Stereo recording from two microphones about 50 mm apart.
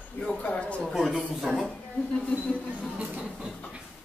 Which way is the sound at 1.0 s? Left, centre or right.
Centre.